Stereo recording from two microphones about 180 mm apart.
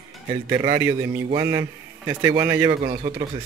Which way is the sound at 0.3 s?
25° right (ahead or behind).